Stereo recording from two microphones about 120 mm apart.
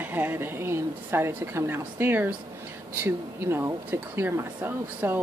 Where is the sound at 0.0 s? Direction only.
15° right (ahead or behind).